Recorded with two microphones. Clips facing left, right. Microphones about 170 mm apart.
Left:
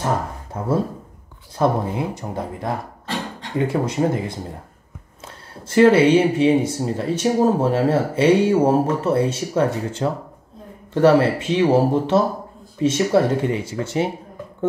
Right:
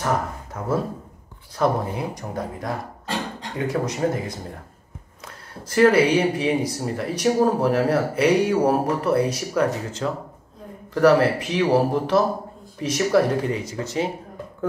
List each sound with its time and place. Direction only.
0.0 s speech: 30° left (ahead or behind)
5.2 s speech: 25° left (ahead or behind)